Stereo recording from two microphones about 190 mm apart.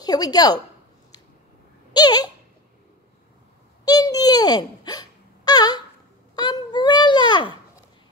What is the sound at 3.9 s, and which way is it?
Wail, 20° left (ahead or behind).